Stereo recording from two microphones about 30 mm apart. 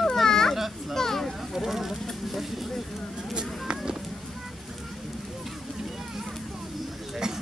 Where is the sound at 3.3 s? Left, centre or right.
Right.